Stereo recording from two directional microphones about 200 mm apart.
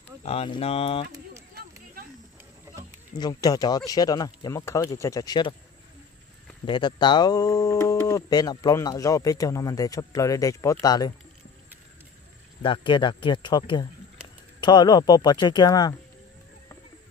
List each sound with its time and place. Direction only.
0.2 s speech: 30° left (ahead or behind)
3.2 s speech: 20° left (ahead or behind)
6.6 s speech: 25° left (ahead or behind)
12.6 s speech: 25° left (ahead or behind)